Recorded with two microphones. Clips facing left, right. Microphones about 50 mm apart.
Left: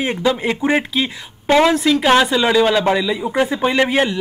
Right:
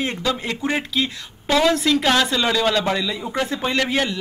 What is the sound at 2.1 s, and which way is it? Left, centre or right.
A man's voice, centre.